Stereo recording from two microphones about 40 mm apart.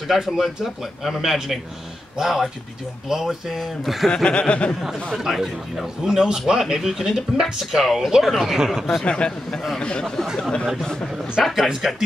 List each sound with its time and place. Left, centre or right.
0.1 s a man's voice: centre
4.1 s chuckle: left
5.1 s a man's voice: centre
8.5 s a man's voice: centre
9.0 s chuckle: left
11.4 s speech: centre